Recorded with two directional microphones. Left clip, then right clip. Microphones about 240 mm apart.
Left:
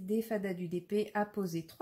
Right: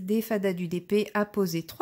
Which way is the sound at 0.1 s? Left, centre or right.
Right.